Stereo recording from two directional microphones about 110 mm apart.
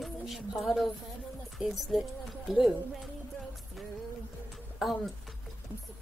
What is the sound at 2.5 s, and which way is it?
Speech, centre (ahead or behind).